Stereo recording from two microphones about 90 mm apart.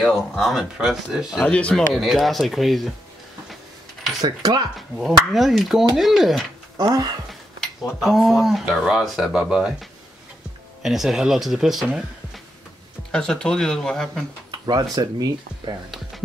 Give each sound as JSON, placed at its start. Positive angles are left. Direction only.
{"t": 0.0, "sound": "speech", "side_deg": 0}
{"t": 1.4, "sound": "speech", "side_deg": 10}
{"t": 2.0, "sound": "speech", "side_deg": 0}
{"t": 4.2, "sound": "speech", "side_deg": -45}
{"t": 4.7, "sound": "speech", "side_deg": 0}
{"t": 6.8, "sound": "speech", "side_deg": -45}
{"t": 8.0, "sound": "speech", "side_deg": 0}
{"t": 13.1, "sound": "speech", "side_deg": 5}
{"t": 14.5, "sound": "speech", "side_deg": -50}
{"t": 15.9, "sound": "a sound", "side_deg": 0}